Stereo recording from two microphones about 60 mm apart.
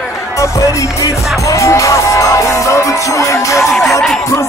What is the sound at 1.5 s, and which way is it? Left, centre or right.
Music, left.